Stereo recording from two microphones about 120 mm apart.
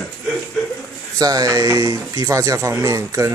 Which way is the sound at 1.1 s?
30° right (ahead or behind).